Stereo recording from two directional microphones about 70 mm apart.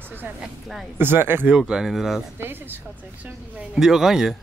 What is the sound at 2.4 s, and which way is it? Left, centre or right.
Speech, right.